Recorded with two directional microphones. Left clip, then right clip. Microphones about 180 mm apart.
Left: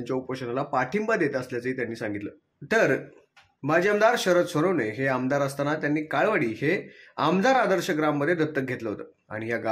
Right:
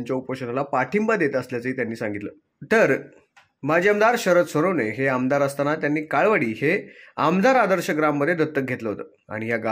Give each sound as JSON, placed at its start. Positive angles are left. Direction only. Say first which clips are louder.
{"t": 0.0, "sound": "speech", "louder": "right 3 dB", "side_deg": -25}